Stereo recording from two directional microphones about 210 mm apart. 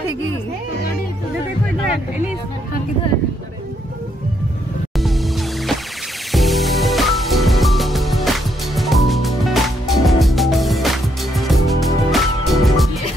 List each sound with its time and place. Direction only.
6.3 s music: centre (ahead or behind)